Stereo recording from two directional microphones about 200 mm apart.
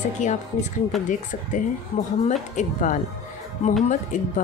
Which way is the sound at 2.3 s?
40° left (ahead or behind).